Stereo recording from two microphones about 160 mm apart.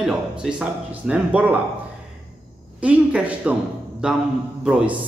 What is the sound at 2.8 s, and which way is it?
A man's voice, 10° right (ahead or behind).